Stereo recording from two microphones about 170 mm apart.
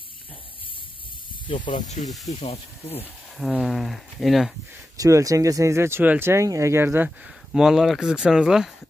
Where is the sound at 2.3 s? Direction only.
35° left (ahead or behind).